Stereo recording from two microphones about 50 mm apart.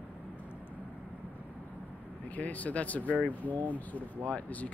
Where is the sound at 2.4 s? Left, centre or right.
Left.